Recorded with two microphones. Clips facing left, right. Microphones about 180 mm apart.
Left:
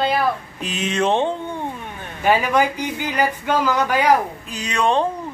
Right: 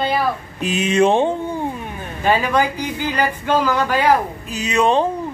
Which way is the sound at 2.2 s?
15° left (ahead or behind).